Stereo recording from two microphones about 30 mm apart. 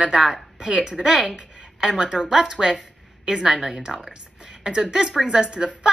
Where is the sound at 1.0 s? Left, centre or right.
Right.